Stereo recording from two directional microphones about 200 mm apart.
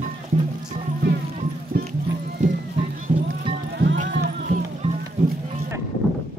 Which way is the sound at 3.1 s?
40° right (ahead or behind).